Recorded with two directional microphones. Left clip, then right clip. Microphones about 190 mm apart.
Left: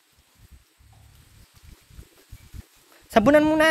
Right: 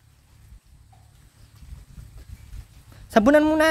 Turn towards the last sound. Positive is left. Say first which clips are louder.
# even
turn(degrees=-30)  # may be behind; listen again after turning